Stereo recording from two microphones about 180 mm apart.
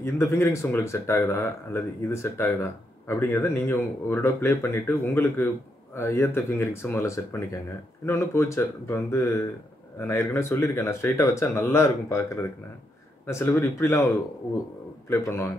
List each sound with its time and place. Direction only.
0.0 s speech: 15° left (ahead or behind)
15.0 s speech: 15° left (ahead or behind)